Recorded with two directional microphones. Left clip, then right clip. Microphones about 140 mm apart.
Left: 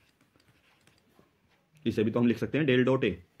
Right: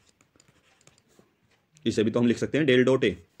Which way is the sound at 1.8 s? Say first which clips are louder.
Right 3 dB; 30° right (ahead or behind).